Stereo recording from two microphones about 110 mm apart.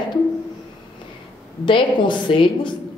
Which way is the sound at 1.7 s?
50° left (ahead or behind).